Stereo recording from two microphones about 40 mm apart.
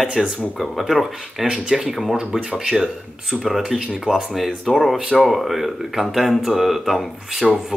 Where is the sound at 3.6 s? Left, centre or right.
Right.